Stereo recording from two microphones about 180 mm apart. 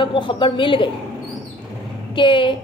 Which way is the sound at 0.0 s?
25° left (ahead or behind).